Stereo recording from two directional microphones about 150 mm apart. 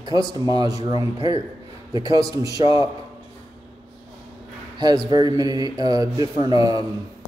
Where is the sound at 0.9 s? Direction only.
35° left (ahead or behind).